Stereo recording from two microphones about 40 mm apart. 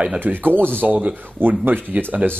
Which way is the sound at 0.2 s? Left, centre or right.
Right.